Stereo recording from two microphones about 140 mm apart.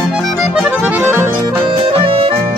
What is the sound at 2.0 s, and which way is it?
Music, 40° right (ahead or behind).